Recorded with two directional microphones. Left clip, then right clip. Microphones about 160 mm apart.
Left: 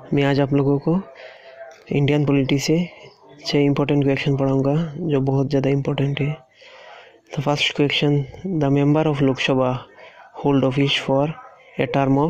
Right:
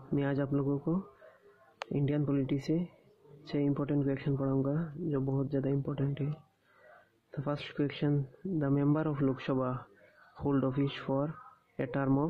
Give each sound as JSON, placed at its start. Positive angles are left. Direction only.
{"t": 0.1, "sound": "a man's voice", "side_deg": 30}